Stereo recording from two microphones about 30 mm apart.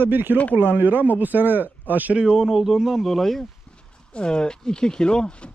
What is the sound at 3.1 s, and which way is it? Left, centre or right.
Speech, centre.